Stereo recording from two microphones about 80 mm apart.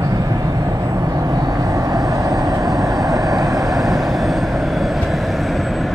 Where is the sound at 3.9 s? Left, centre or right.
Centre.